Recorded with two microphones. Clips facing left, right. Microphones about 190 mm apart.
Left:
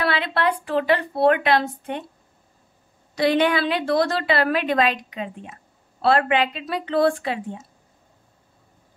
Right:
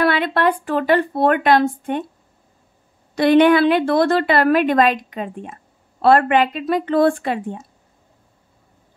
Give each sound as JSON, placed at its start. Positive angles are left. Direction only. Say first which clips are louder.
{"t": 0.0, "sound": "a woman's voice", "louder": "right 5 dB", "side_deg": -50}
{"t": 3.2, "sound": "a woman's voice", "louder": "right 7 dB", "side_deg": -50}